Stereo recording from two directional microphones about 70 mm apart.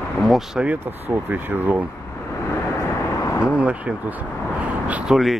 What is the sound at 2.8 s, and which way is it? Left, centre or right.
Vehicle, left.